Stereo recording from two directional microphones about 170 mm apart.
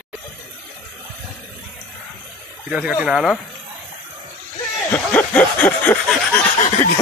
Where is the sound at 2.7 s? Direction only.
5° right (ahead or behind).